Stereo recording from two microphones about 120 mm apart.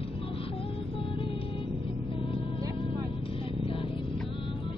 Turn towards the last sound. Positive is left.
turn(degrees=50)  # may be behind; listen again after turning